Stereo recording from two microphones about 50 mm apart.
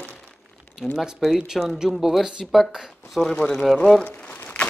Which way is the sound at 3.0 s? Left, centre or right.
Centre.